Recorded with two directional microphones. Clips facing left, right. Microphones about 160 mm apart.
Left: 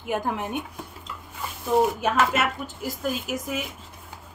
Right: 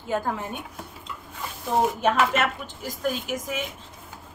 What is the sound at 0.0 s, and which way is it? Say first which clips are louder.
Speech: even; 15° left (ahead or behind).